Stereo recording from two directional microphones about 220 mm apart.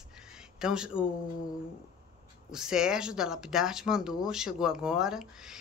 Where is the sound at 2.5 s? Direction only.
5° right (ahead or behind).